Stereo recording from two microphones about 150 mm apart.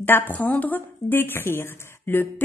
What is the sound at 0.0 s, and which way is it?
A woman's voice, 15° left (ahead or behind).